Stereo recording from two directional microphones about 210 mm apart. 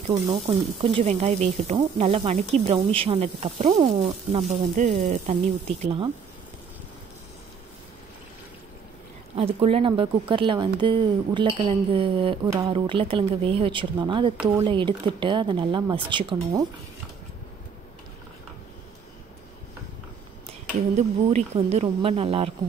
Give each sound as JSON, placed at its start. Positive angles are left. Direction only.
{"t": 0.0, "sound": "speech", "side_deg": -25}
{"t": 4.5, "sound": "speech", "side_deg": -35}
{"t": 9.3, "sound": "speech", "side_deg": -25}
{"t": 14.3, "sound": "speech", "side_deg": -5}
{"t": 14.6, "sound": "speech", "side_deg": -25}
{"t": 20.9, "sound": "speech", "side_deg": -30}